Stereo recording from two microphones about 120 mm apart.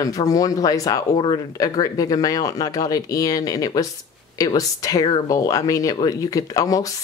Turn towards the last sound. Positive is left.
turn(degrees=30)  # may be behind; listen again after turning